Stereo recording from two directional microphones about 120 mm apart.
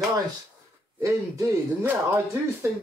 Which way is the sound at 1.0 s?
25° right (ahead or behind).